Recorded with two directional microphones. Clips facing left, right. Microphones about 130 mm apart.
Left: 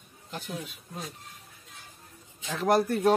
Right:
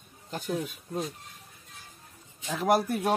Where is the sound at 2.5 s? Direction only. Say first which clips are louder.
Left 1 dB; 10° right (ahead or behind).